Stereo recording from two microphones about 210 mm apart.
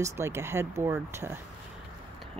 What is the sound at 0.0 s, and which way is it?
A woman's voice, 15° right (ahead or behind).